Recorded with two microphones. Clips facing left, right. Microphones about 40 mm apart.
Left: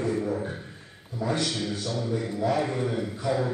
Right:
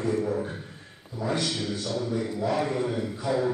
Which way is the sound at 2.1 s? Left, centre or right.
Centre.